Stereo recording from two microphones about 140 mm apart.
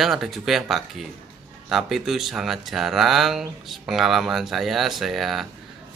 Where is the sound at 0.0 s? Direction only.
Centre (ahead or behind).